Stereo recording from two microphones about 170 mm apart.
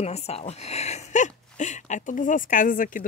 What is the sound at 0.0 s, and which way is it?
Speech, 40° left (ahead or behind).